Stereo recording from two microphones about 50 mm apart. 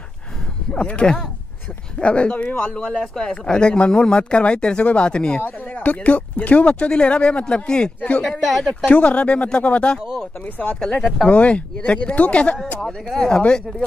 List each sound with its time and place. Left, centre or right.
0.7 s speech: left
5.7 s speech: left
8.2 s speech: centre
8.8 s speech: left
12.8 s speech: centre